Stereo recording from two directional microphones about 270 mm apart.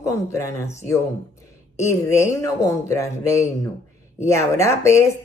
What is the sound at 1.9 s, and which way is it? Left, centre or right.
Speech, centre.